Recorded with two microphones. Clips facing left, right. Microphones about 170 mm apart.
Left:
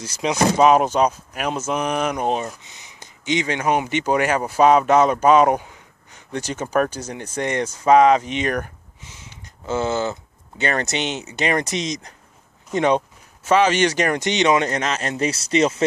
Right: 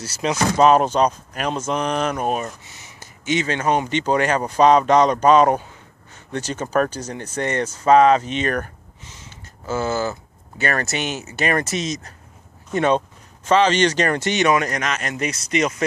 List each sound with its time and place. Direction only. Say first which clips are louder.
0.0 s speech: left 2 dB; 10° left (ahead or behind); by 15.8 s 30° left (ahead or behind)